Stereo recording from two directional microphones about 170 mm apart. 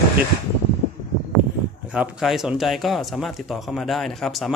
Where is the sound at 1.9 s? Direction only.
5° right (ahead or behind).